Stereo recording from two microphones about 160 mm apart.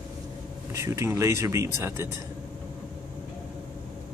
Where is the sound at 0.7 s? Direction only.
20° right (ahead or behind).